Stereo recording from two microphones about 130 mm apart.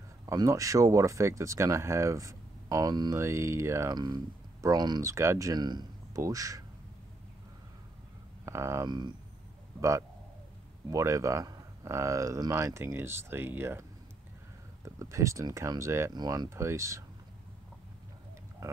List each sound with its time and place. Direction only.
0.3 s speech: 25° right (ahead or behind)
5.1 s speech: 20° right (ahead or behind)
8.5 s speech: 20° right (ahead or behind)
8.8 s speech: 35° right (ahead or behind)
9.8 s a man's voice: 25° right (ahead or behind)
14.9 s speech: 25° right (ahead or behind)